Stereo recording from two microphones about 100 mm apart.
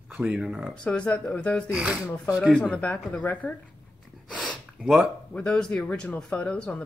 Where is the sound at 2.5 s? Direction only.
10° left (ahead or behind).